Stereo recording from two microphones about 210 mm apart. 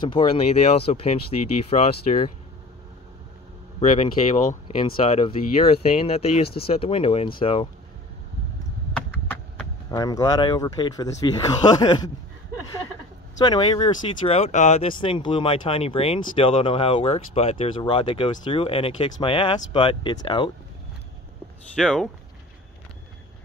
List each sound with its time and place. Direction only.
0.0 s speech: 25° left (ahead or behind)
4.6 s speech: 25° left (ahead or behind)
9.8 s speech: 15° left (ahead or behind)
13.4 s speech: 20° left (ahead or behind)
21.7 s speech: centre (ahead or behind)